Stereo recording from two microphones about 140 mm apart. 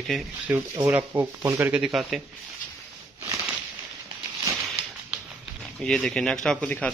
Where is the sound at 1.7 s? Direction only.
5° right (ahead or behind).